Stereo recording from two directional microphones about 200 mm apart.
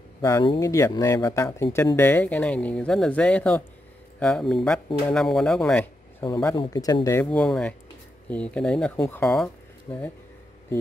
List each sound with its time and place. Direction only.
0.2 s speech: 20° left (ahead or behind)
6.2 s speech: 20° left (ahead or behind)